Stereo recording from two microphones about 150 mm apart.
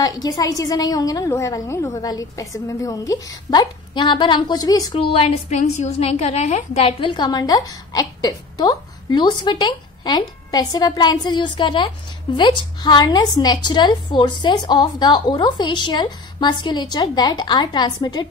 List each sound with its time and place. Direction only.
0.0 s a woman's voice: 25° left (ahead or behind)